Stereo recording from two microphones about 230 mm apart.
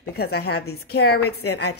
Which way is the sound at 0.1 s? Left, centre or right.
Left.